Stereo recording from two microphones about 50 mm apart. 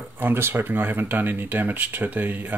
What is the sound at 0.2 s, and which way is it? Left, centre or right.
Speech, right.